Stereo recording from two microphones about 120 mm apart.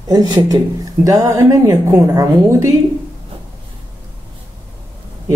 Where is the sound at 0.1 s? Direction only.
35° right (ahead or behind).